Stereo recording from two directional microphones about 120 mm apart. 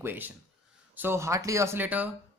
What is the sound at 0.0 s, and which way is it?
Speech, 15° right (ahead or behind).